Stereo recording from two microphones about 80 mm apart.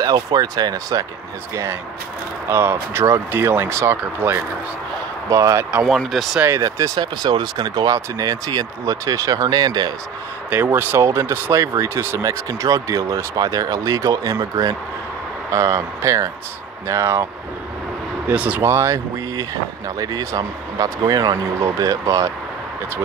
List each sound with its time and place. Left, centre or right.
0.0 s speech: right
1.5 s speech: right
5.3 s speech: right
5.9 s speech: centre
7.0 s speech: right
10.5 s speech: right
12.2 s speech: right
15.5 s speech: right
18.3 s speech: centre
18.6 s speech: right
20.0 s speech: right
21.5 s speech: right